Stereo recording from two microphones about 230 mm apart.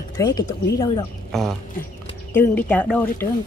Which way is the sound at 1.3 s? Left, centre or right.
Centre.